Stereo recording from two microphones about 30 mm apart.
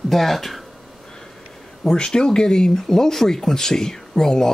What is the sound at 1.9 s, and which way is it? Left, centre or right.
Speech, left.